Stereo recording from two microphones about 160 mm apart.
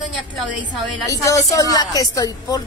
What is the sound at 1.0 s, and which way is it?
A woman's voice, 20° left (ahead or behind).